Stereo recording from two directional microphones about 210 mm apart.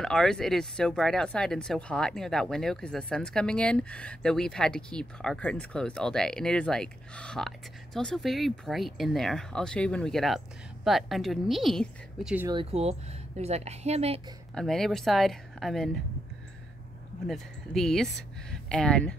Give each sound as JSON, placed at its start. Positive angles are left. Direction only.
{"t": 0.0, "sound": "speech", "side_deg": 0}
{"t": 12.4, "sound": "speech", "side_deg": -25}
{"t": 14.5, "sound": "speech", "side_deg": 0}
{"t": 17.3, "sound": "speech", "side_deg": 0}